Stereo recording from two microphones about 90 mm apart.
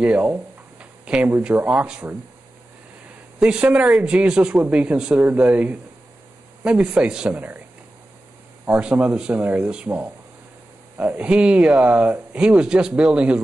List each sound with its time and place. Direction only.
0.0 s a sound: 15° right (ahead or behind)
1.5 s speech: 20° right (ahead or behind)
3.3 s speech: 10° right (ahead or behind)
8.6 s speech: 15° right (ahead or behind)